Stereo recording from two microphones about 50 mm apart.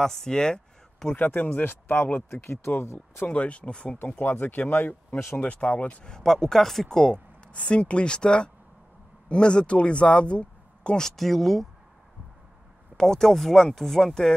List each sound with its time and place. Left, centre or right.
0.0 s speech: centre
1.1 s speech: left
2.3 s speech: left
3.3 s speech: left
4.2 s speech: left
5.4 s speech: left
6.0 s speech: centre
7.5 s speech: left
11.1 s speech: centre
12.9 s speech: centre